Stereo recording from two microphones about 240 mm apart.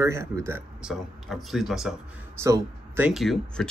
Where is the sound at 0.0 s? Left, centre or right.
Centre.